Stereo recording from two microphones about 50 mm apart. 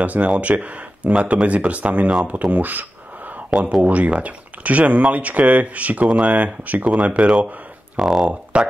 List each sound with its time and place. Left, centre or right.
0.0 s speech: right
2.2 s a sound: right
3.8 s speech: right
8.0 s speech: centre
8.5 s speech: right